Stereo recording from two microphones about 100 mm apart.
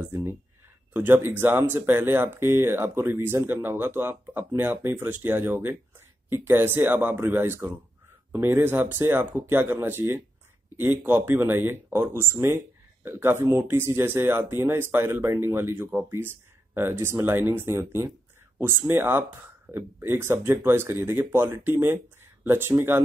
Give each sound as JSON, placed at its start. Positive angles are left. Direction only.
{"t": 0.0, "sound": "speech", "side_deg": -20}